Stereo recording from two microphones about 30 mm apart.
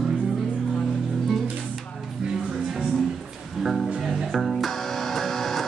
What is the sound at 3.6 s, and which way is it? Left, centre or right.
Music, centre.